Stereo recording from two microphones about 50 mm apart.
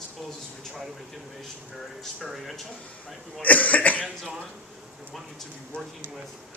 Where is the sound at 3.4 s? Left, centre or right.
Left.